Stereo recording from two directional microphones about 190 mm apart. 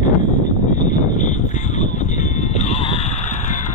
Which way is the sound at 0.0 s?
40° left (ahead or behind).